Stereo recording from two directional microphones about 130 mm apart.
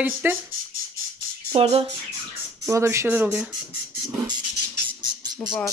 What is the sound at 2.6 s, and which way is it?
Speech, 20° right (ahead or behind).